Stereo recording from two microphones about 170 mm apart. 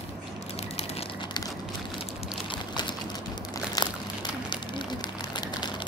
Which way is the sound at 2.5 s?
25° left (ahead or behind).